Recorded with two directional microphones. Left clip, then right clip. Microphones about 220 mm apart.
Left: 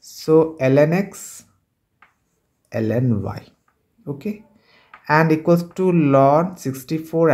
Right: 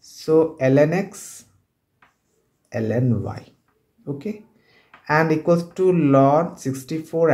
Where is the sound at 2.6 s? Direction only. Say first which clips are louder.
Left 2 dB; 25° left (ahead or behind).